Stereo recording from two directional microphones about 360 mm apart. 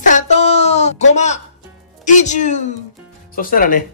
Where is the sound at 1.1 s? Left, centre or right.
Centre.